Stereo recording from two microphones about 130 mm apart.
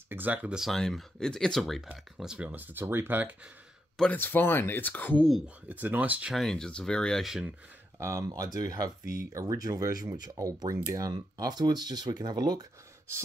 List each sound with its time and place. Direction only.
0.1 s speech: 15° right (ahead or behind)
4.0 s speech: 15° left (ahead or behind)
5.7 s speech: 15° right (ahead or behind)
6.3 s speech: 5° left (ahead or behind)
8.0 s speech: 20° right (ahead or behind)
9.0 s speech: 85° left
9.3 s speech: 25° right (ahead or behind)